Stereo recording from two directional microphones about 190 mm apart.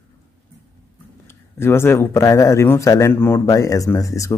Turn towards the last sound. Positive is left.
turn(degrees=15)  # may be behind; listen again after turning